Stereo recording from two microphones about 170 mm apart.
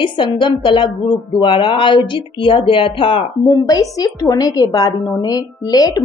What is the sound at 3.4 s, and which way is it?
A woman's voice, 20° left (ahead or behind).